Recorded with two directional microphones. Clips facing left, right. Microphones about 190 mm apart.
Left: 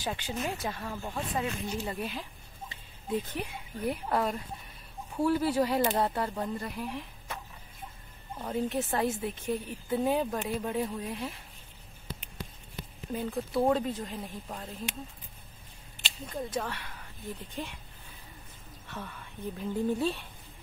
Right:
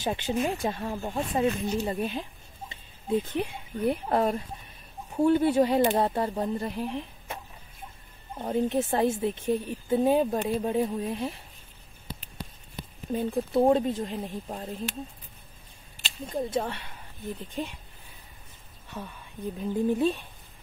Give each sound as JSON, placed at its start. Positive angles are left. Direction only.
{"t": 0.0, "sound": "a woman's voice", "side_deg": -25}
{"t": 8.4, "sound": "a woman's voice", "side_deg": -25}
{"t": 13.1, "sound": "a woman's voice", "side_deg": -25}
{"t": 16.3, "sound": "a woman's voice", "side_deg": -25}
{"t": 18.9, "sound": "a woman's voice", "side_deg": -15}